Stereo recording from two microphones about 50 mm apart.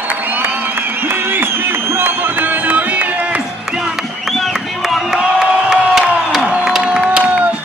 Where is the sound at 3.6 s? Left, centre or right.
Centre.